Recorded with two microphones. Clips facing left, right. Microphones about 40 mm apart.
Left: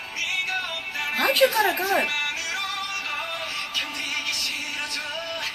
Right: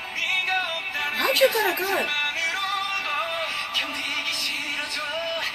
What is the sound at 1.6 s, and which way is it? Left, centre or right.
Speech, centre.